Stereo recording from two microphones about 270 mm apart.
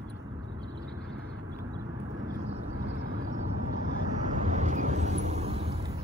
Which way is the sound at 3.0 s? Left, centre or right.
Right.